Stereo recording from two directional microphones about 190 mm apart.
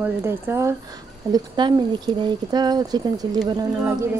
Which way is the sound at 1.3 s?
25° right (ahead or behind).